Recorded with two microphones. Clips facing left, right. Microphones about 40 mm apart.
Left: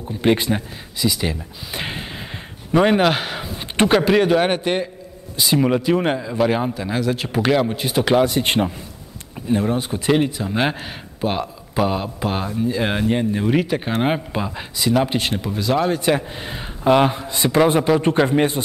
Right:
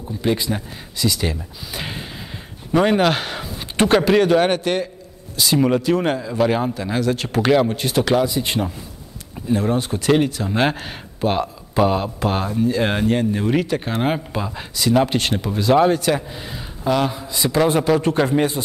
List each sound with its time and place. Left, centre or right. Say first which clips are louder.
0.2 s a man's voice: left 3 dB; left
0.9 s speech: even; centre
1.7 s speech: left 2 dB; centre
2.7 s speech: left 1 dB; centre
8.3 s a man's voice: left 3 dB; left
9.3 s a man's voice: even; centre
15.3 s a man's voice: right 7 dB; centre
16.0 s speech: left 1 dB; centre
16.4 s a man's voice: left 6 dB; left
17.7 s a man's voice: left 1 dB; centre